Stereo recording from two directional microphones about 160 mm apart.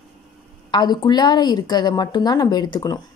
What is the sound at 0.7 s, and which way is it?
A woman's voice, 25° left (ahead or behind).